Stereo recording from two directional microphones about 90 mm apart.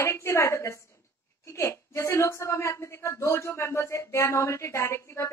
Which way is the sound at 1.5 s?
30° left (ahead or behind).